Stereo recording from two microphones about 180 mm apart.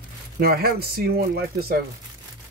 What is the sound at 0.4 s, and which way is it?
Speech, 60° right (ahead or behind).